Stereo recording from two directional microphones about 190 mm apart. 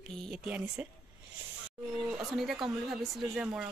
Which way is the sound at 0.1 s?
Centre (ahead or behind).